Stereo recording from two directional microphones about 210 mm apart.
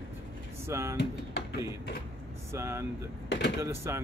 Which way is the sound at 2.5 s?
10° right (ahead or behind).